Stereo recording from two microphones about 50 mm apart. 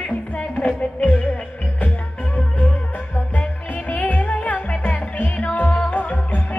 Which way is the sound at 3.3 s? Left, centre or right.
Left.